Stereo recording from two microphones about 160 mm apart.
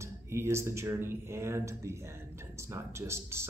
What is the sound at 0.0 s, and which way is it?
Speech, 15° right (ahead or behind).